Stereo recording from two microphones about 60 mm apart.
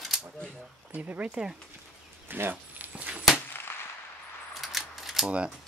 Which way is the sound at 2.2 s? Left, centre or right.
Right.